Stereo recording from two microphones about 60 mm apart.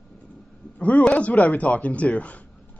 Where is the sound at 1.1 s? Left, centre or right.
Left.